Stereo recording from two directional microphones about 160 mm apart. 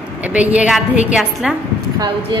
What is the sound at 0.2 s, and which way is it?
A woman's voice, 10° right (ahead or behind).